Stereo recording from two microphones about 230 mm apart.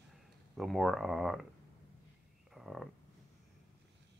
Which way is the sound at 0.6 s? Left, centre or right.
Centre.